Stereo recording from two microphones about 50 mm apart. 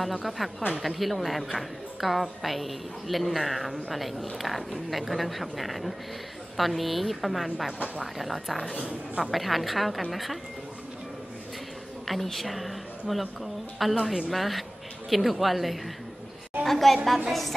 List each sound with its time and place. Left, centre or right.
0.0 s a woman's voice: centre
12.1 s a woman's voice: centre